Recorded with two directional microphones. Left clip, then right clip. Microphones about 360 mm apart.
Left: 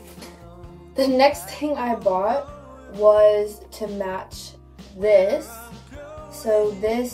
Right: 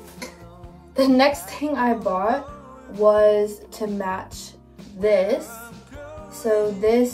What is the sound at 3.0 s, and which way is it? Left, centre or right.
Music, right.